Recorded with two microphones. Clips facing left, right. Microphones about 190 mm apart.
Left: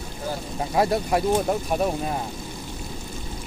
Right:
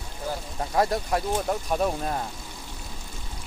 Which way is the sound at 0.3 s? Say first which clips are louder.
Left 2 dB; 5° left (ahead or behind).